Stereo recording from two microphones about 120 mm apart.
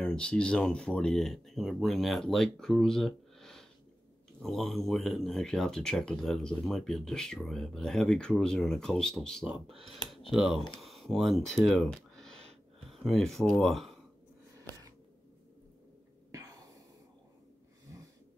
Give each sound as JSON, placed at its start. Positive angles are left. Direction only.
{"t": 0.0, "sound": "speech", "side_deg": 5}
{"t": 9.7, "sound": "speech", "side_deg": -50}
{"t": 10.3, "sound": "speech", "side_deg": 0}
{"t": 16.3, "sound": "a sound", "side_deg": -30}